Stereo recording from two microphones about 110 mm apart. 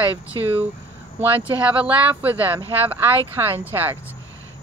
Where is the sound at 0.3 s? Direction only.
35° right (ahead or behind).